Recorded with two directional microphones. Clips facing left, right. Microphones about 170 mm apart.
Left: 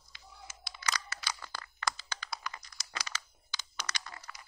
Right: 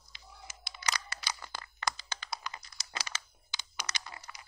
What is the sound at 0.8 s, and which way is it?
Computer keyboard, 20° right (ahead or behind).